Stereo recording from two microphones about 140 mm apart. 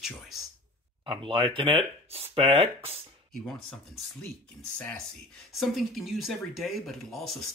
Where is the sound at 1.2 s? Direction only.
35° right (ahead or behind).